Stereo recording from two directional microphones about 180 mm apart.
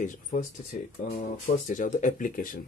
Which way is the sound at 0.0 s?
45° left (ahead or behind).